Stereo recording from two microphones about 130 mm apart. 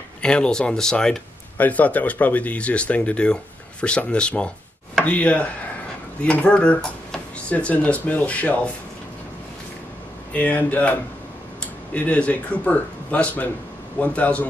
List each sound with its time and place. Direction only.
0.2 s speech: 5° left (ahead or behind)
10.3 s speech: 10° left (ahead or behind)